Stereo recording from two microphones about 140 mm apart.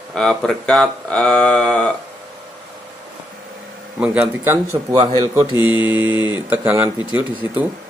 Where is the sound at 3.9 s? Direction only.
10° right (ahead or behind); by 5.4 s 25° right (ahead or behind).